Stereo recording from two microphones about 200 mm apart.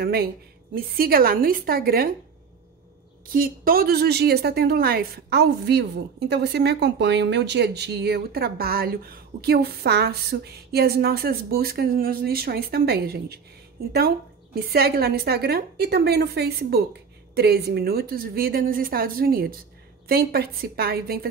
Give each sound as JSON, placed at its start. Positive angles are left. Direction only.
{"t": 0.0, "sound": "a woman's voice", "side_deg": -50}
{"t": 3.3, "sound": "a woman's voice", "side_deg": -45}